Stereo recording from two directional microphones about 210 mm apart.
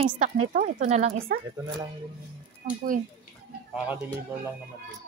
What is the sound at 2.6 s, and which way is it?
Speech, 40° right (ahead or behind).